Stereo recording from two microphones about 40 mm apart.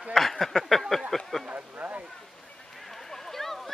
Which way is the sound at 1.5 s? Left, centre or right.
Right.